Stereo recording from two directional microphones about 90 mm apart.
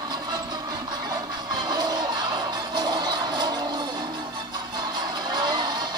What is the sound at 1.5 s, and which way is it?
Music, 50° right (ahead or behind).